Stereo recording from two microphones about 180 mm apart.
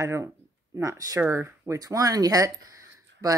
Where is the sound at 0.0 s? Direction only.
15° right (ahead or behind).